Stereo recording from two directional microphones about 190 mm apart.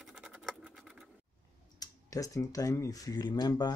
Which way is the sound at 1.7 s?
20° left (ahead or behind).